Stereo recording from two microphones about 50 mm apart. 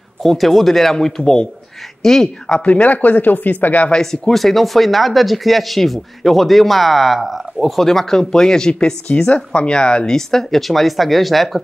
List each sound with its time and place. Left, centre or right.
0.3 s speech: centre
2.6 s speech: left
3.9 s speech: centre
9.0 s speech: left; by 11.6 s centre